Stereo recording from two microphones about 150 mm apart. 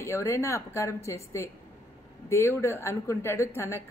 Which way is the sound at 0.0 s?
20° left (ahead or behind).